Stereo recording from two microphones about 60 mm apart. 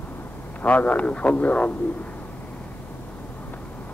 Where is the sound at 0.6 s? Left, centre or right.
Left.